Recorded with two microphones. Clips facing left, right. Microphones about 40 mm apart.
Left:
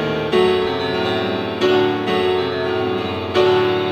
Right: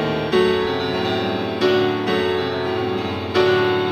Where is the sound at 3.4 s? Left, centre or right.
Centre.